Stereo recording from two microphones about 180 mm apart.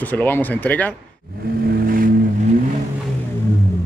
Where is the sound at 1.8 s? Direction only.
50° right (ahead or behind).